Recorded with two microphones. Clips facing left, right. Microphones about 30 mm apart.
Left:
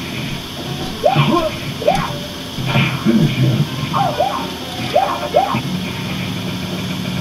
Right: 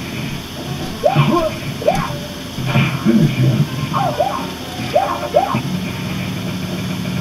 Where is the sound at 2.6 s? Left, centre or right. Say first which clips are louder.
Even; centre.